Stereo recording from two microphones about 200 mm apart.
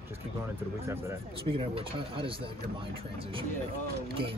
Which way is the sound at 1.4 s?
25° right (ahead or behind).